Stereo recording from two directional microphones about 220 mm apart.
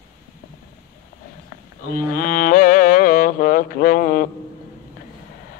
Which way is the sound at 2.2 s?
40° left (ahead or behind).